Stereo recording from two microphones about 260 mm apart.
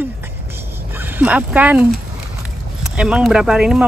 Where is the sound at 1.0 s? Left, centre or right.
Centre.